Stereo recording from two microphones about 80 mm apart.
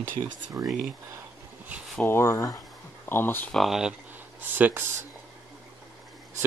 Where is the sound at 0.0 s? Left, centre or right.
Right.